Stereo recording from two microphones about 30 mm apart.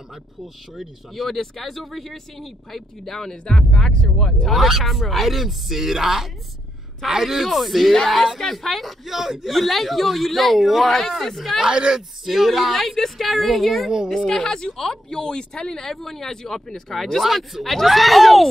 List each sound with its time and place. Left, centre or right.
1.1 s speech: centre
4.5 s speech: centre
7.2 s speech: centre
7.9 s speech: centre
9.0 s a man's voice: centre
9.5 s speech: centre
11.6 s speech: right
12.3 s speech: centre
14.4 s speech: left
15.0 s speech: left
15.9 s speech: centre